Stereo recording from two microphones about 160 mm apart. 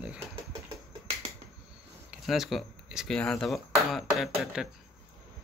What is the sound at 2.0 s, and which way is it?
Speech, centre (ahead or behind).